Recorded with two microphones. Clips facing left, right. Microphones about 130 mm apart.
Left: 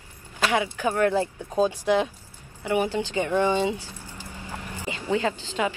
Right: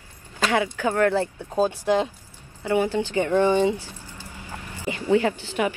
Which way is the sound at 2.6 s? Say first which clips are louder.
Right 2 dB; 15° left (ahead or behind).